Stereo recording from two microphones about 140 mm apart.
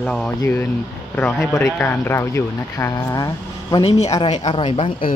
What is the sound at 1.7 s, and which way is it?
Speech, 20° left (ahead or behind).